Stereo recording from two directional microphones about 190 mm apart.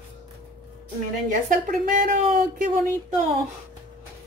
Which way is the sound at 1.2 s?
45° right (ahead or behind).